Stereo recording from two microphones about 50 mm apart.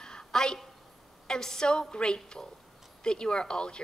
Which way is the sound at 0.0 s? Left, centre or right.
Centre.